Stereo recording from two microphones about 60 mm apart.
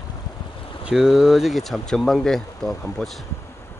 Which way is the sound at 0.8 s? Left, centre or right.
Centre.